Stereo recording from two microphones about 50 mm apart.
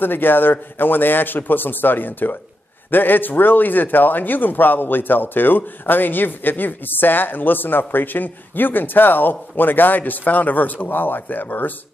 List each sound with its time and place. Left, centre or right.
0.0 s a man's voice: left